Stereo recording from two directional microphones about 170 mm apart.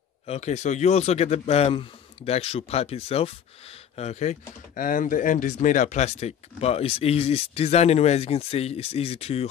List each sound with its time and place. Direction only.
0.3 s speech: 40° left (ahead or behind)